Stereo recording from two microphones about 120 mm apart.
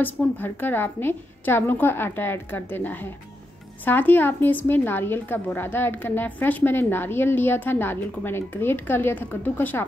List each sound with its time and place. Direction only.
0.0 s a woman's voice: 15° left (ahead or behind)